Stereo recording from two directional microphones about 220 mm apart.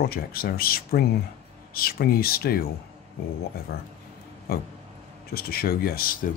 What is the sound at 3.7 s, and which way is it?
Speech, 45° left (ahead or behind).